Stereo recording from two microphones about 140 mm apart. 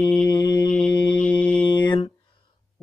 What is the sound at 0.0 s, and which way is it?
Mantra, 10° left (ahead or behind).